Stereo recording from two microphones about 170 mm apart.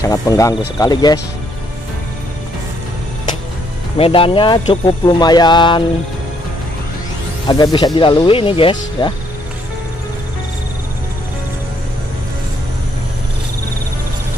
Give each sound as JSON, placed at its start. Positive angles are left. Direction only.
{"t": 0.0, "sound": "speech", "side_deg": 20}
{"t": 4.0, "sound": "speech", "side_deg": 30}
{"t": 7.4, "sound": "speech", "side_deg": 25}